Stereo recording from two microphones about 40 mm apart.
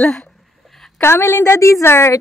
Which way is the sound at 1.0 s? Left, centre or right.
Left.